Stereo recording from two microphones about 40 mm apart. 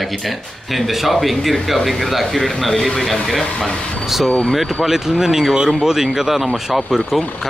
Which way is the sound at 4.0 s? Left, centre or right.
Centre.